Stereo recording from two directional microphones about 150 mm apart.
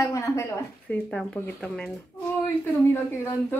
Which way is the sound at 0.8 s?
10° left (ahead or behind).